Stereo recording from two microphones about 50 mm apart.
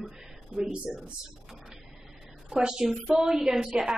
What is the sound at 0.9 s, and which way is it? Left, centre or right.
Speech, centre.